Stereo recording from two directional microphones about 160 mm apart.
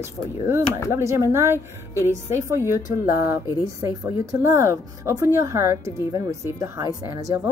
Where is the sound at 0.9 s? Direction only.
15° right (ahead or behind).